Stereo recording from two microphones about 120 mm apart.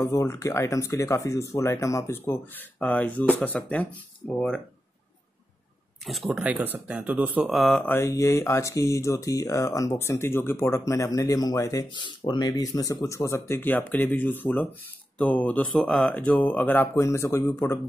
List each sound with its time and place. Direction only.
0.0 s speech: 25° left (ahead or behind); by 4.6 s 10° left (ahead or behind)
6.2 s speech: 5° right (ahead or behind)
7.4 s speech: centre (ahead or behind)
7.8 s speech: 20° left (ahead or behind)
11.9 s speech: 40° left (ahead or behind); by 17.7 s 20° left (ahead or behind)